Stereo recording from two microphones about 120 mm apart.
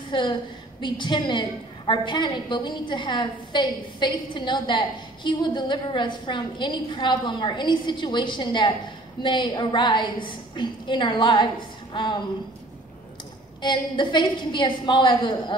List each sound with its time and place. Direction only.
0.1 s a woman's voice: 40° left (ahead or behind)
13.6 s a woman's voice: 40° left (ahead or behind)